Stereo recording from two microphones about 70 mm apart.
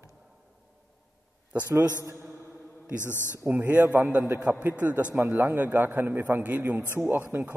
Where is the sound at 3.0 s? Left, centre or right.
Left.